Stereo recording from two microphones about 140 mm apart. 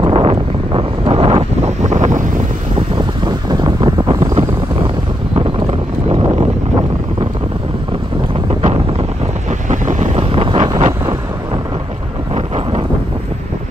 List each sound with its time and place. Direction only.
0.0 s wind noise: 40° right (ahead or behind)
1.8 s wind noise: 60° right (ahead or behind)
3.3 s wind: 30° right (ahead or behind)
9.5 s wind noise: 60° right (ahead or behind)
10.1 s wind noise: 40° right (ahead or behind)
12.4 s wind: 45° right (ahead or behind)